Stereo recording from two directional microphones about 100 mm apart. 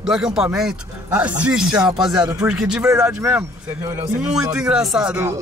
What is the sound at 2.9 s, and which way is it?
Speech, 25° right (ahead or behind).